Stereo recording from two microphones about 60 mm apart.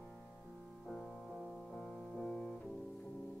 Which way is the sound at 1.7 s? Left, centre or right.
Centre.